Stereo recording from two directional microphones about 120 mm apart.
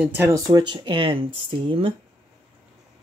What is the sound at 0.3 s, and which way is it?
Speech, 30° right (ahead or behind).